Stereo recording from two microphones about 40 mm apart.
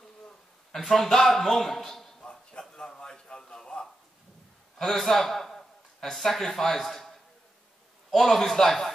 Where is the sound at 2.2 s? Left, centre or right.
Left.